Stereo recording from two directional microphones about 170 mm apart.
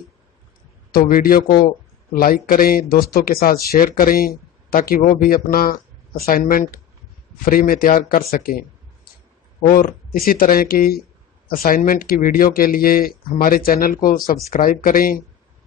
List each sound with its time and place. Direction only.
0.9 s speech: 55° left (ahead or behind)